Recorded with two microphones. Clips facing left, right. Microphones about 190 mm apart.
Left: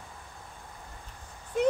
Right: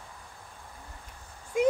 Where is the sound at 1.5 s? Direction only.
10° right (ahead or behind).